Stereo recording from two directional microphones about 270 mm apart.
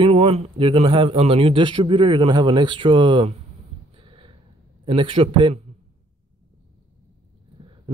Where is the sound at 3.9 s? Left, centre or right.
Centre.